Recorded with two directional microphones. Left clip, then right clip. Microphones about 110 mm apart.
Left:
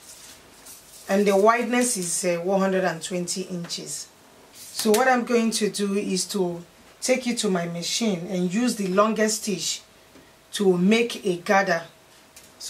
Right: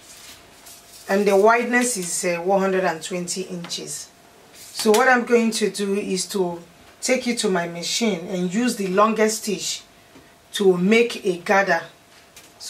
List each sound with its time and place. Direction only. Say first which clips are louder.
1.0 s speech: right 2 dB; 20° left (ahead or behind)
4.9 s speech: right 4 dB; 20° left (ahead or behind)
10.5 s speech: right 4 dB; 20° left (ahead or behind)